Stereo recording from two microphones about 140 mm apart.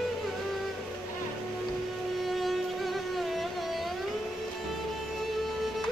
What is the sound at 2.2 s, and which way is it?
Music, centre (ahead or behind).